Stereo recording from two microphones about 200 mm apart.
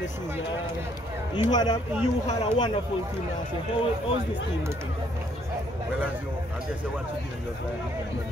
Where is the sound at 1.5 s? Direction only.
20° left (ahead or behind).